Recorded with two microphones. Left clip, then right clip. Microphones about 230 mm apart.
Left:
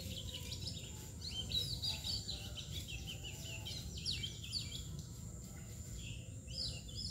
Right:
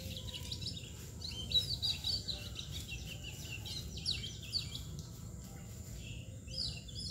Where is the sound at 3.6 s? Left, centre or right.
Right.